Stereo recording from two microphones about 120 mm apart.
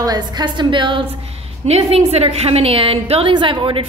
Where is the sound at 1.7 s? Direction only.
60° right (ahead or behind).